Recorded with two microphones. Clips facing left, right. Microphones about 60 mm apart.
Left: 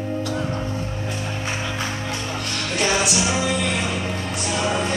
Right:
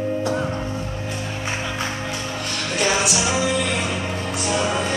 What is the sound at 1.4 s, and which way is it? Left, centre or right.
Music, centre.